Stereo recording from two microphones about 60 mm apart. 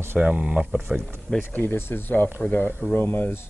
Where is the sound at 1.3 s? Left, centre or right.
Left.